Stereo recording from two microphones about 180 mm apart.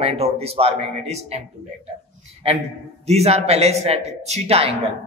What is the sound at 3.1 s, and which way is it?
A man's voice, 35° right (ahead or behind).